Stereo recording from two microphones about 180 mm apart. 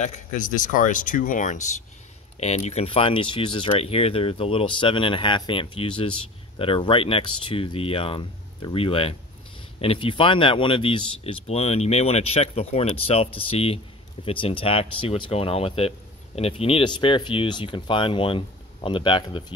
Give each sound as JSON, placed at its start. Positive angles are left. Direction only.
{"t": 0.0, "sound": "speech", "side_deg": 45}